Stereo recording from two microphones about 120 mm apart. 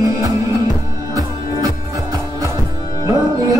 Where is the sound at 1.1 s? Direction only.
30° right (ahead or behind).